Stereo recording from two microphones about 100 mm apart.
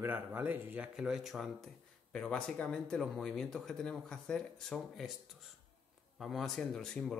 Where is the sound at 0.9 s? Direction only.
5° right (ahead or behind).